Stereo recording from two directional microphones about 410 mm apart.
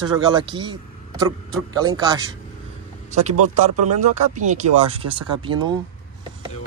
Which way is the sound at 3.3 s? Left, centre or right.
Right.